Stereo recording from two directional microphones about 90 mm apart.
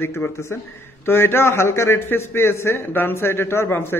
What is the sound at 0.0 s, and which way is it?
A man's voice, 25° left (ahead or behind).